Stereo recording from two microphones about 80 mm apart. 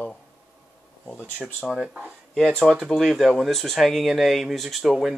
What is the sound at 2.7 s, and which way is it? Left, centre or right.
Speech, centre.